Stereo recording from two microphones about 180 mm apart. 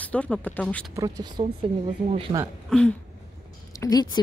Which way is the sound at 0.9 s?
20° right (ahead or behind).